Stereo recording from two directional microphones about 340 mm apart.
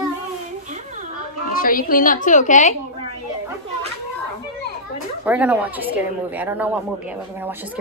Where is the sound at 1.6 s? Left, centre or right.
Left.